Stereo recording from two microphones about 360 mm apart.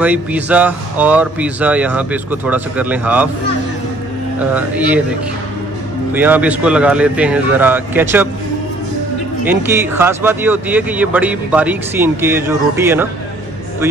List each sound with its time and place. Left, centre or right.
0.0 s speech: centre
4.6 s speech: centre
6.1 s speech: centre
9.5 s speech: centre